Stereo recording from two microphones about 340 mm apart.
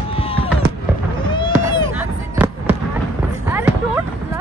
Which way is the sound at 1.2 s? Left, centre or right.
Centre.